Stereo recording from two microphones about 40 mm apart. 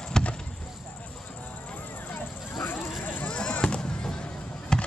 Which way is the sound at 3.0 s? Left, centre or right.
Left.